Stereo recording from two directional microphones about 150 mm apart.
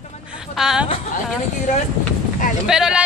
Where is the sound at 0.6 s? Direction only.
5° right (ahead or behind).